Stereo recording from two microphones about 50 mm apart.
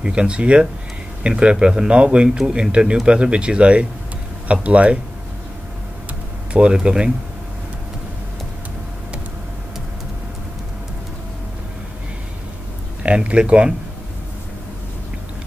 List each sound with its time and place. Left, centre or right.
0.0 s speech: right
6.5 s speech: centre
13.0 s speech: right